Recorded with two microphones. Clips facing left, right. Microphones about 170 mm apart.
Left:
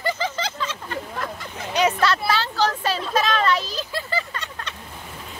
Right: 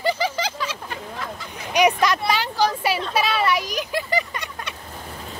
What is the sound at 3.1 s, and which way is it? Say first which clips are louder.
Vehicle: left 2 dB; 10° right (ahead or behind).